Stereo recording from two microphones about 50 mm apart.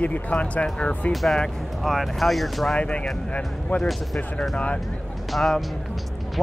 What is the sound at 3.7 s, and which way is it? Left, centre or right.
Speech, left.